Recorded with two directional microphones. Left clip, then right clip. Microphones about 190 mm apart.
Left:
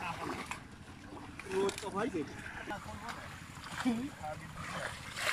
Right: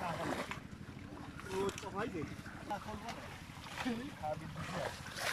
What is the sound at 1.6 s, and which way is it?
Boat, 15° left (ahead or behind).